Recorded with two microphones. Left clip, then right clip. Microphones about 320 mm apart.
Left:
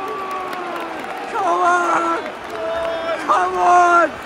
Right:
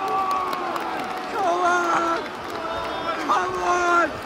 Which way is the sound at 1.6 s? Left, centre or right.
Centre.